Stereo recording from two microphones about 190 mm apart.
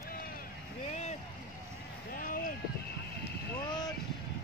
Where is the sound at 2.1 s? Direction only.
50° left (ahead or behind).